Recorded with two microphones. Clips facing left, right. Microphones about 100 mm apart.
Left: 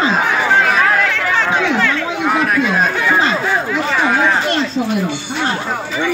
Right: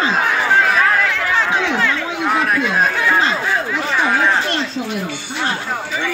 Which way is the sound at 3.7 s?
5° left (ahead or behind).